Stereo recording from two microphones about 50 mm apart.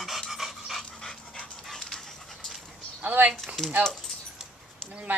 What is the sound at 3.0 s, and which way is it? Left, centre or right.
Speech, right.